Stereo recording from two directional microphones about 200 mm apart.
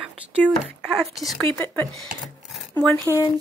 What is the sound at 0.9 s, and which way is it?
Speech, centre (ahead or behind).